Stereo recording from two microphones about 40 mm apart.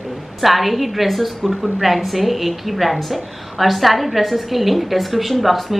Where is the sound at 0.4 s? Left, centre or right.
Centre.